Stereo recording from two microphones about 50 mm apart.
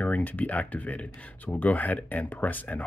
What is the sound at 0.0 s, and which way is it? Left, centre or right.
Speech, left.